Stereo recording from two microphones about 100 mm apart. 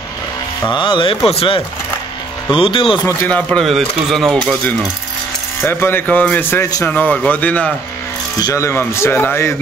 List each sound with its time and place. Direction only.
0.7 s speech: 55° left (ahead or behind)
1.3 s speech: 70° left (ahead or behind)
3.3 s speech: 15° left (ahead or behind)
3.6 s speech: centre (ahead or behind)
5.6 s speech: 25° left (ahead or behind)
8.5 s speech: 30° left (ahead or behind)